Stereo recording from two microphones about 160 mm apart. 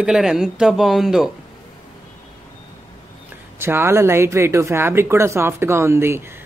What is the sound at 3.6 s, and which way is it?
Speech, 15° right (ahead or behind).